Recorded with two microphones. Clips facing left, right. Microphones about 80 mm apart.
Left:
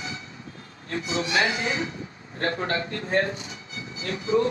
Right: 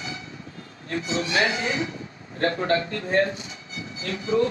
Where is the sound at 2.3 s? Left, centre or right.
Left.